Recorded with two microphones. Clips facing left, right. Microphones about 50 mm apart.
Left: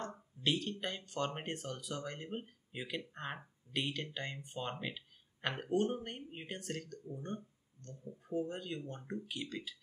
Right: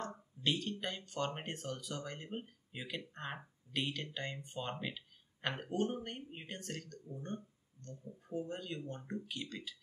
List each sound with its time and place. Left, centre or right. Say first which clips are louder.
0.4 s speech: left 1 dB; centre